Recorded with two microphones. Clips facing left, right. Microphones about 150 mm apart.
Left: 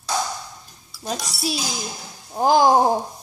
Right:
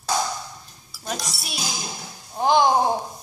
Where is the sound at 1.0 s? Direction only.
35° left (ahead or behind).